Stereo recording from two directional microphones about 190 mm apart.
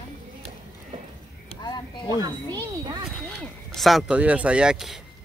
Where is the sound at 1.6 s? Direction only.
25° left (ahead or behind).